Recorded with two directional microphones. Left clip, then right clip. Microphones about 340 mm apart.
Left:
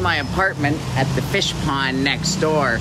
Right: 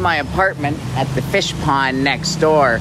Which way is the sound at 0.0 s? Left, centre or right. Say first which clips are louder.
Right 3 dB; centre.